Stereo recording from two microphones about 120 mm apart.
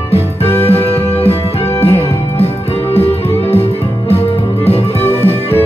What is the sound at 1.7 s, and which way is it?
Music, 60° left (ahead or behind).